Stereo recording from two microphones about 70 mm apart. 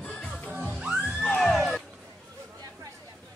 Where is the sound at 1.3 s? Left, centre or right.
Centre.